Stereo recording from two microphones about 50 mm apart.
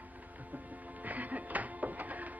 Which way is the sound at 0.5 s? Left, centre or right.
Right.